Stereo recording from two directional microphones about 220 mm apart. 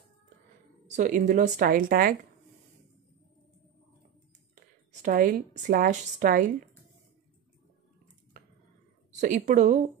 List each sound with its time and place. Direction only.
0.8 s a woman's voice: 35° right (ahead or behind)
5.0 s a woman's voice: 40° right (ahead or behind)
9.2 s a woman's voice: 35° right (ahead or behind)